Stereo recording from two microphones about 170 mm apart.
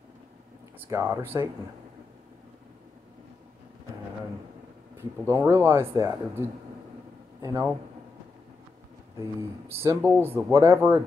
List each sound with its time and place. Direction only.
0.7 s speech: 15° right (ahead or behind)
5.2 s speech: 15° right (ahead or behind)
9.7 s speech: 15° right (ahead or behind)